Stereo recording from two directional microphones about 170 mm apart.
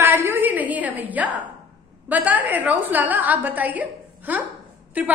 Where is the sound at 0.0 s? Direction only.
15° right (ahead or behind).